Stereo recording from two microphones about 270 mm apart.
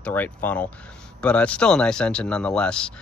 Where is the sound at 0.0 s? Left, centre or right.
Centre.